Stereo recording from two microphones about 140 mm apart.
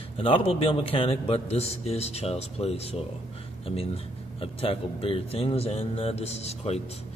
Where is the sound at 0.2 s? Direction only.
40° left (ahead or behind).